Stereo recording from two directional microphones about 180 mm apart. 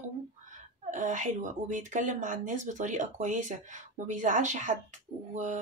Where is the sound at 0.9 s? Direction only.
45° right (ahead or behind).